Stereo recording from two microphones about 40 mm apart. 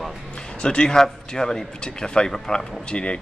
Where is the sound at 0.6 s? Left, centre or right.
Left.